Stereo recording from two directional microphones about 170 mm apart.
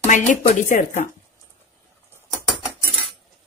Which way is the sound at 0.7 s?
50° left (ahead or behind).